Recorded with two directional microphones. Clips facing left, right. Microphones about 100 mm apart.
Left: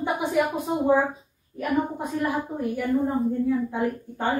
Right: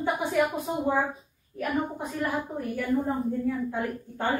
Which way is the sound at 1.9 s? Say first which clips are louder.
Left 3 dB; 15° left (ahead or behind).